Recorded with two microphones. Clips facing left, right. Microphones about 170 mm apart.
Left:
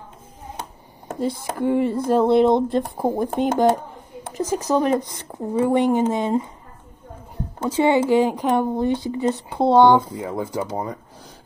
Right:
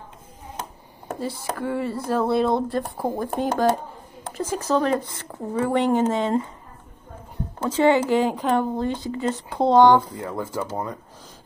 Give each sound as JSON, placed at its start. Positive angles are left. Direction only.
{"t": 1.6, "sound": "speech", "side_deg": 15}
{"t": 7.6, "sound": "speech", "side_deg": 10}